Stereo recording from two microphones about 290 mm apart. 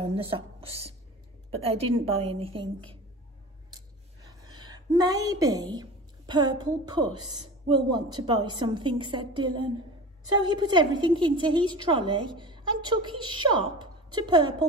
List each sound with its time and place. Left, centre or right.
0.0 s a woman's voice: centre
4.3 s a woman's voice: centre